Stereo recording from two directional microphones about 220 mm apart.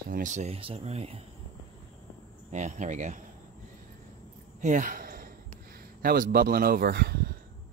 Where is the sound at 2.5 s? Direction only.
30° right (ahead or behind).